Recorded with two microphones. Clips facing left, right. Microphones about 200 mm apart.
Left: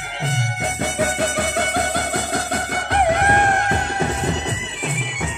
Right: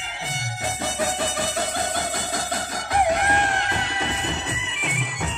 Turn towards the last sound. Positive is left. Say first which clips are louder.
# left 6 dB
turn(degrees=50)  # may be behind; listen again after turning